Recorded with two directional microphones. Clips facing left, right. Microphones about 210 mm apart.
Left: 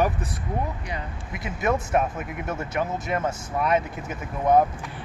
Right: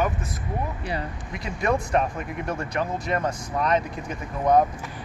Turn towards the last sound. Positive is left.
turn(degrees=5)  # may be behind; listen again after turning